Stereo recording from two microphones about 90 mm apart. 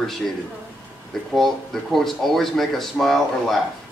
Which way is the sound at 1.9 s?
5° left (ahead or behind).